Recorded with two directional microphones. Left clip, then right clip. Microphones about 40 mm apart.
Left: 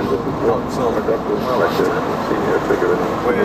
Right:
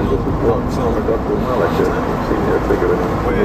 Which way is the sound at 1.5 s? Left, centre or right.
Centre.